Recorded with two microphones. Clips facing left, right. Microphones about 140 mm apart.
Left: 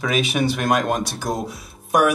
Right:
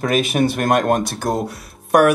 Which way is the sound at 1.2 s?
55° right (ahead or behind).